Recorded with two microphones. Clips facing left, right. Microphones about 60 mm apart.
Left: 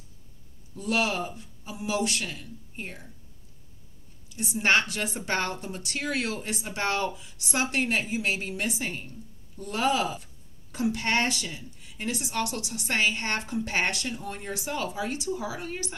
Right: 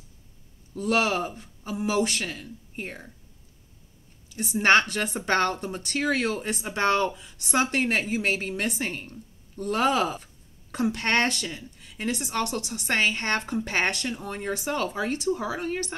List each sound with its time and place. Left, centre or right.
0.7 s speech: right
4.4 s speech: right